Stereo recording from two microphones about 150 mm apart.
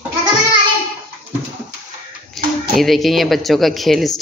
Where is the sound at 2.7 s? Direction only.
Centre (ahead or behind).